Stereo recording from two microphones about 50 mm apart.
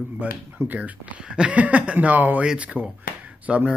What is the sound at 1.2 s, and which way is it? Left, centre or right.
Speech, centre.